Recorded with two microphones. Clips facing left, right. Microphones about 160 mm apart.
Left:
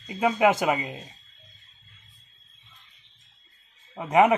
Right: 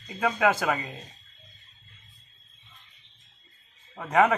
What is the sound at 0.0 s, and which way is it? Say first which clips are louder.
Speech: left 3 dB; 20° left (ahead or behind).